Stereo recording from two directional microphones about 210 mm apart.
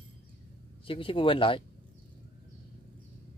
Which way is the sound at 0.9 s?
25° left (ahead or behind).